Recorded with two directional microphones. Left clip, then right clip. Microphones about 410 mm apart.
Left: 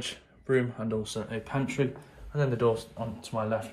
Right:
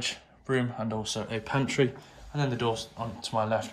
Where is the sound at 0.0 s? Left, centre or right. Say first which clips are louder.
Right 4 dB; centre.